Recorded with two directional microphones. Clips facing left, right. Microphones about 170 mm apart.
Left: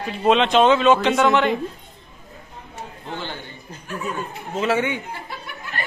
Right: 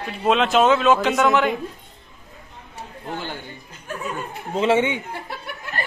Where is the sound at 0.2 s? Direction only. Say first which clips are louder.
Left 1 dB; centre (ahead or behind).